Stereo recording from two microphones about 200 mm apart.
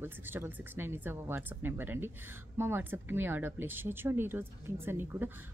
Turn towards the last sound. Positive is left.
turn(degrees=-10)  # may be behind; listen again after turning